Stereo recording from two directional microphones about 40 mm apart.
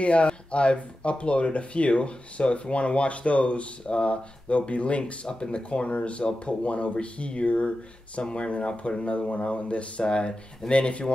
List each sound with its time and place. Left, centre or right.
0.0 s speech: left